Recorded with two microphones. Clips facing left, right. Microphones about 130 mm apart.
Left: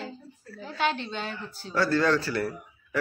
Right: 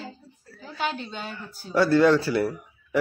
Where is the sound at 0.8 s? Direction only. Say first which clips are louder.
Left 2 dB; 10° right (ahead or behind).